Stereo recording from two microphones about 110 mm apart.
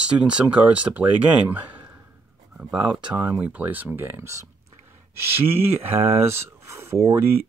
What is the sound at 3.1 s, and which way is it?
Speech, 10° right (ahead or behind).